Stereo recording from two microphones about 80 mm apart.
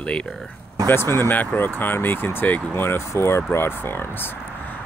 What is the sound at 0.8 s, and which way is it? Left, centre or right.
Speech, left.